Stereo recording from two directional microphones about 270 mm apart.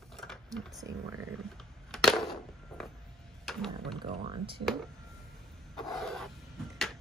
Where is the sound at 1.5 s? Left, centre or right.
Centre.